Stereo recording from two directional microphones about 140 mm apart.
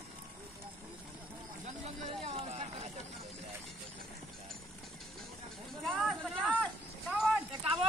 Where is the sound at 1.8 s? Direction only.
45° right (ahead or behind).